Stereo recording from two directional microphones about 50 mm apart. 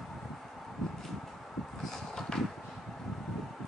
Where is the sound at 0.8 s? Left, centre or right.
Centre.